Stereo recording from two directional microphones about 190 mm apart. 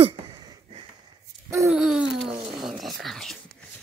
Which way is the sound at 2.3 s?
25° right (ahead or behind).